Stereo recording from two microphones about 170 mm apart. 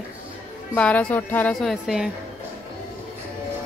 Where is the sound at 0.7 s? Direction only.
5° left (ahead or behind).